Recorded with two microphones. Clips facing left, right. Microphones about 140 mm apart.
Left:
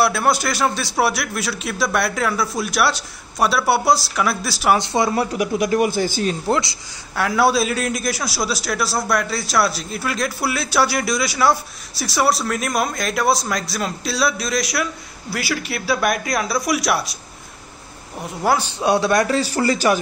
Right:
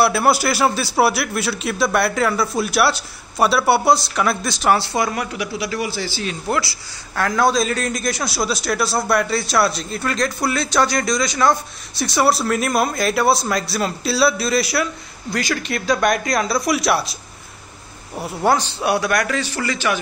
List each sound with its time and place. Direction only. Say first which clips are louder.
0.0 s a man's voice: right 2 dB; 5° right (ahead or behind)
4.7 s speech: left 2 dB; 20° left (ahead or behind); by 6.3 s 50° left (ahead or behind)
6.5 s speech: left 2 dB; 20° left (ahead or behind)
7.2 s a man's voice: even; 10° left (ahead or behind)
18.8 s a man's voice: left 2 dB; 25° left (ahead or behind)